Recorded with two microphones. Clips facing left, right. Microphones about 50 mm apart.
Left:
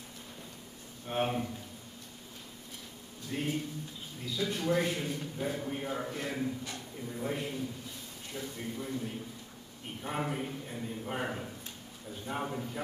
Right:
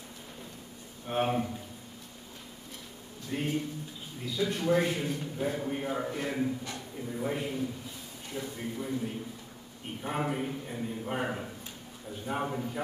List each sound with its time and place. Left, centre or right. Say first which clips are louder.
1.0 s a man's voice: right 3 dB; centre
3.3 s a man's voice: right 2 dB; centre